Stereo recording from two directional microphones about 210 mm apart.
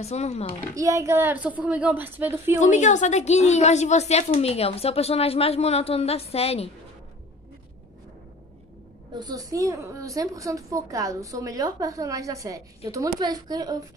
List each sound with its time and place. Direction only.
0.0 s a child's voice: 30° left (ahead or behind)
0.7 s a woman's voice: 15° right (ahead or behind)
2.6 s a woman's voice: 35° left (ahead or behind)
9.1 s a woman's voice: 20° right (ahead or behind)